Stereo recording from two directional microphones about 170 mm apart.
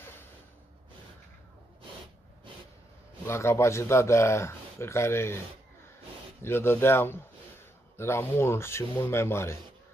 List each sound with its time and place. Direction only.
3.3 s speech: 15° left (ahead or behind)
6.4 s a man's voice: 15° left (ahead or behind)